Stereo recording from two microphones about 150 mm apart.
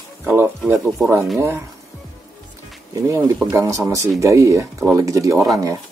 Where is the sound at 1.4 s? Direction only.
15° right (ahead or behind).